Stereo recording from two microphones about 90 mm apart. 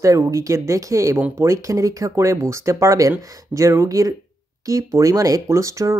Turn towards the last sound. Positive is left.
turn(degrees=-35)  # may be behind; listen again after turning